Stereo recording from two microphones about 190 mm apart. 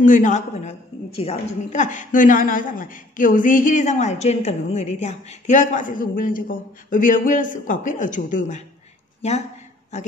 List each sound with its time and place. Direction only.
0.0 s a woman's voice: 40° left (ahead or behind)